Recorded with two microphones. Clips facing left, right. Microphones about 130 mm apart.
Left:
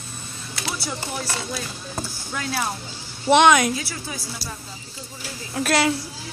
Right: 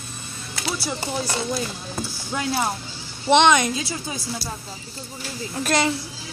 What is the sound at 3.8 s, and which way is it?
Speech, 20° right (ahead or behind).